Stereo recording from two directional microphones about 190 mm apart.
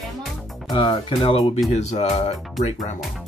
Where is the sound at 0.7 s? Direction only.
25° left (ahead or behind).